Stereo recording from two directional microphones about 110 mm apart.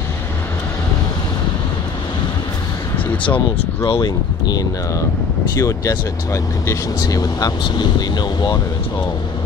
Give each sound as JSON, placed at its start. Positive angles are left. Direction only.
{"t": 4.0, "sound": "speech", "side_deg": 40}